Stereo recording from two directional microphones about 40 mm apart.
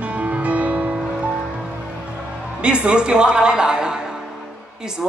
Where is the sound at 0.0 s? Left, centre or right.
Right.